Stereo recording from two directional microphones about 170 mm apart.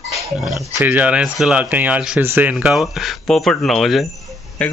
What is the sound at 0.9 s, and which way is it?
Speech, 5° right (ahead or behind).